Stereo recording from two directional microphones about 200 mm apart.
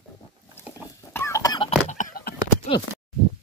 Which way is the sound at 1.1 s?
15° left (ahead or behind).